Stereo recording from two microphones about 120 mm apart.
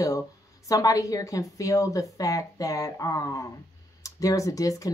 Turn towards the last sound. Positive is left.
turn(degrees=30)  # may be behind; listen again after turning